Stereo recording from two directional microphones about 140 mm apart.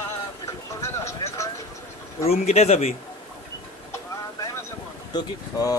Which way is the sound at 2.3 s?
50° left (ahead or behind).